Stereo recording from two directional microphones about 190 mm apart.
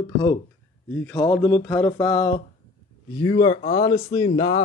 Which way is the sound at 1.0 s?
10° left (ahead or behind).